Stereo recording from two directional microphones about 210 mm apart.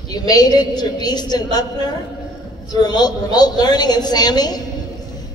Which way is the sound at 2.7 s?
20° left (ahead or behind).